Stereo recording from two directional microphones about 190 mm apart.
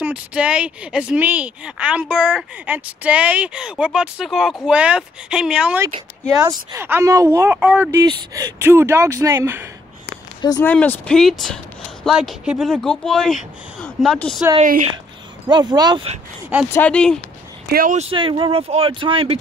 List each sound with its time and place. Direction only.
0.0 s speech: 5° right (ahead or behind)
6.3 s a woman's voice: 15° right (ahead or behind)
10.0 s a sound: 15° left (ahead or behind)
10.7 s speech: 5° left (ahead or behind)
15.4 s speech: 20° right (ahead or behind)
16.7 s speech: 5° left (ahead or behind)
17.6 s speech: 50° right (ahead or behind)
17.9 s speech: 30° right (ahead or behind)